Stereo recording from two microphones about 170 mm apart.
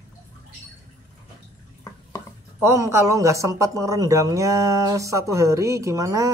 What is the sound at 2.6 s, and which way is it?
A man's voice, 15° right (ahead or behind).